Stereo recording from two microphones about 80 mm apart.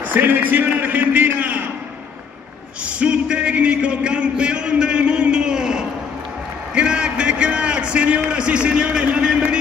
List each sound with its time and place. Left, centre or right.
0.1 s a man's voice: right
3.0 s speech: centre
6.7 s a sound: centre